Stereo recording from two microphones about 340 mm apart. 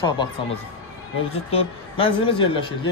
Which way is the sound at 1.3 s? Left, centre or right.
Centre.